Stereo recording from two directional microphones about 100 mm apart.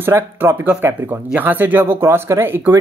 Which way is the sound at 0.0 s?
20° right (ahead or behind).